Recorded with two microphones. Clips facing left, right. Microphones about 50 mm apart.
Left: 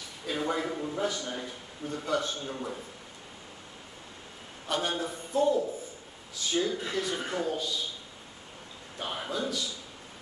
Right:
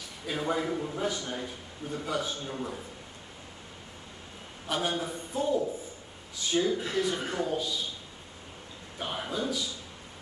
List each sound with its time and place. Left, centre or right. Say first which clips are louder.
0.3 s speech: right 1 dB; centre
1.2 s a man's voice: even; centre
1.9 s speech: left 2 dB; centre
4.6 s speech: even; centre
8.9 s speech: even; centre